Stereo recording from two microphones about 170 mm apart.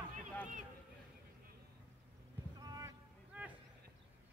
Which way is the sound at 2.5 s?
20° right (ahead or behind).